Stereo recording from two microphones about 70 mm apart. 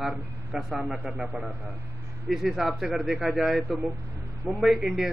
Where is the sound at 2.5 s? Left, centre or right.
Centre.